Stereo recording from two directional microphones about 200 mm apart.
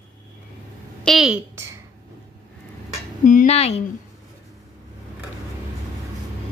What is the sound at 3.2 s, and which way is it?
Speech, 40° left (ahead or behind).